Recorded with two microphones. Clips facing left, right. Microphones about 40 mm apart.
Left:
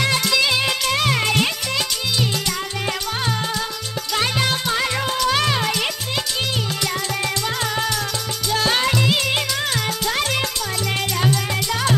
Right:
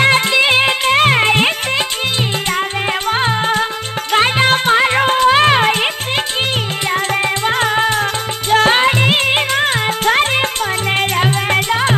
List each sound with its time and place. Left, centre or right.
0.0 s music: right
3.1 s music: right
7.4 s music: right